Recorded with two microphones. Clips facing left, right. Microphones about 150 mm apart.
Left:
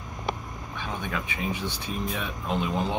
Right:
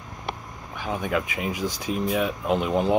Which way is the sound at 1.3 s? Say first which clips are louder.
Right 2 dB; 90° right.